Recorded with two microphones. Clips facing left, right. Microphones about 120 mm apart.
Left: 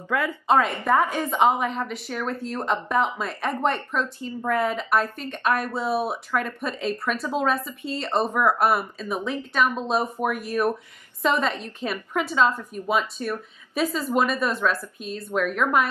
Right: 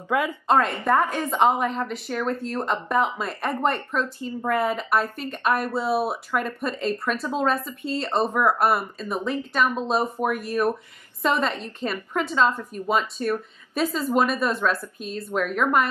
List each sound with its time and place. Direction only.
0.1 s a woman's voice: 15° right (ahead or behind)
0.5 s speech: centre (ahead or behind)